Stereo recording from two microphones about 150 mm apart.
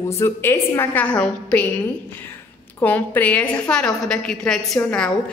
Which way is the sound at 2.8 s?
10° left (ahead or behind).